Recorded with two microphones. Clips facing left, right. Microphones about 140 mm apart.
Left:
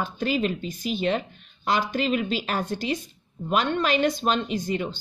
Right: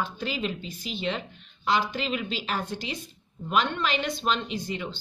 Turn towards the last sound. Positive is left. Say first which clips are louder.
# left 5 dB
turn(degrees=45)  # may be behind; listen again after turning